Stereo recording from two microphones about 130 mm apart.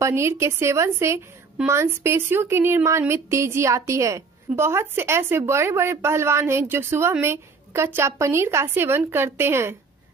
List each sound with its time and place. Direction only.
0.0 s a woman's voice: 20° right (ahead or behind)